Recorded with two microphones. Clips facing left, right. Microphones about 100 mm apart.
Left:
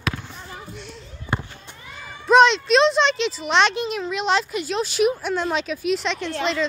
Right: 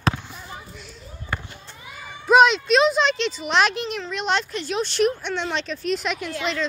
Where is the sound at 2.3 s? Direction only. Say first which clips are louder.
Left 1 dB; 5° right (ahead or behind).